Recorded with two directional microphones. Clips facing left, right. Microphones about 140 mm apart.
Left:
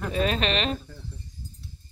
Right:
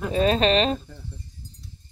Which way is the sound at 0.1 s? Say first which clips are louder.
Right 6 dB; 35° right (ahead or behind).